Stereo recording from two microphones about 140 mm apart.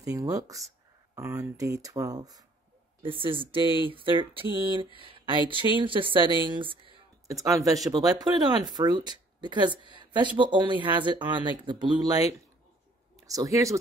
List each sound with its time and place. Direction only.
0.0 s speech: 25° right (ahead or behind)
3.0 s speech: 40° right (ahead or behind)
7.2 s speech: 25° right (ahead or behind)